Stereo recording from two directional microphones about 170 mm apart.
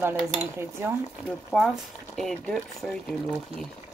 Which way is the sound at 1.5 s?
Centre (ahead or behind).